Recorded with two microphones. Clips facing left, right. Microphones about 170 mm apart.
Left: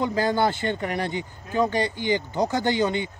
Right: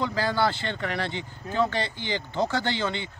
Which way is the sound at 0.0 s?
20° left (ahead or behind).